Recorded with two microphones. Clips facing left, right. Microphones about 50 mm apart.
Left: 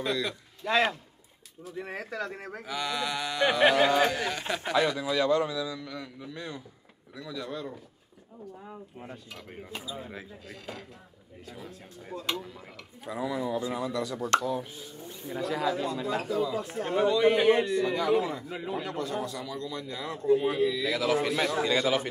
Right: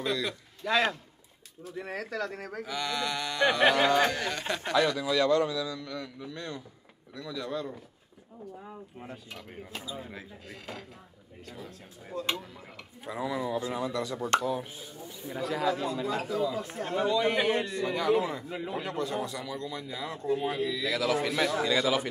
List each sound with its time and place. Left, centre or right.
0.0 s speech: centre
0.7 s a man's voice: centre
13.0 s speech: centre
15.2 s a man's voice: centre
17.7 s speech: centre
18.9 s speech: centre
21.3 s speech: centre